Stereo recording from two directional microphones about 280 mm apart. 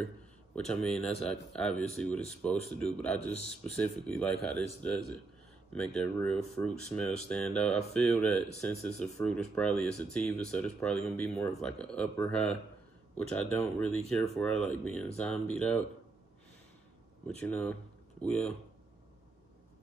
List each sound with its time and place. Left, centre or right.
0.7 s speech: centre
4.3 s speech: right
5.8 s speech: centre
17.4 s speech: centre